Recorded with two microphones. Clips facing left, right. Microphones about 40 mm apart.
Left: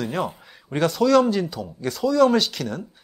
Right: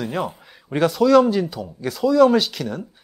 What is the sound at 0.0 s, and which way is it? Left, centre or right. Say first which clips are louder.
Speech: right 1 dB; centre.